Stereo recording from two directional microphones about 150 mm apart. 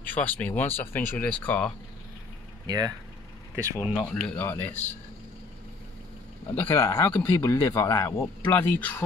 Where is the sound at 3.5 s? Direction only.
15° right (ahead or behind).